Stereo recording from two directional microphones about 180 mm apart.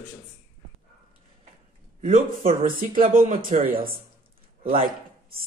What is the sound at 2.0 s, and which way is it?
Speech, 50° right (ahead or behind).